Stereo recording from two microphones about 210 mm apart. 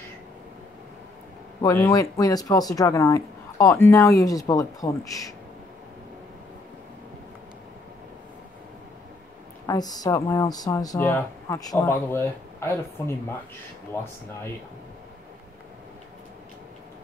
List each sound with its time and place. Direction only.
1.6 s speech: 15° left (ahead or behind)
9.7 s speech: 20° left (ahead or behind)